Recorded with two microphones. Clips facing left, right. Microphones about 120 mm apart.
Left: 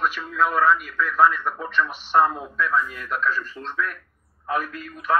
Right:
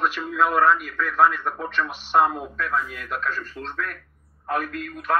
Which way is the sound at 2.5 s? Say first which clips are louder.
Left 3 dB; 50° right (ahead or behind).